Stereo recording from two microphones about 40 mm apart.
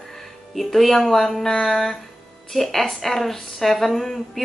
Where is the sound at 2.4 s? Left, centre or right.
Centre.